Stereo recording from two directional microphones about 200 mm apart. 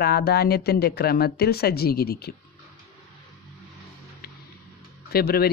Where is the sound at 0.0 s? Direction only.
50° left (ahead or behind).